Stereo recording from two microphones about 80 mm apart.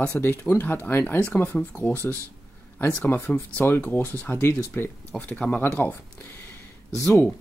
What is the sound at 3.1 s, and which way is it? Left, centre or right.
Speech, left.